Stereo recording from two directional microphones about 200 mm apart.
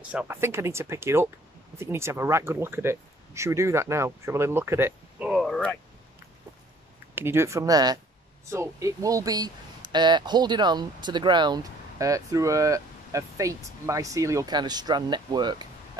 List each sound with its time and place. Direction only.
0.1 s speech: 10° right (ahead or behind)
7.2 s speech: 10° right (ahead or behind)